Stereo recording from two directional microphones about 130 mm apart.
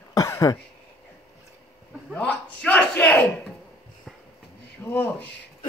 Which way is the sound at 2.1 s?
10° left (ahead or behind).